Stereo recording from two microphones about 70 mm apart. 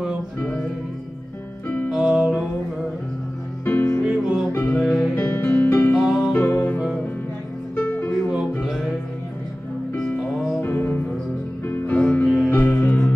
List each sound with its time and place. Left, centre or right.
1.9 s music: centre
3.6 s music: left
4.0 s music: centre
4.5 s music: left
4.7 s music: centre
5.1 s music: left
10.6 s music: left
12.4 s music: left